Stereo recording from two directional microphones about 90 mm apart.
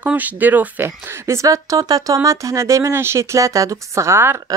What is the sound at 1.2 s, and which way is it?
Speech, 35° right (ahead or behind).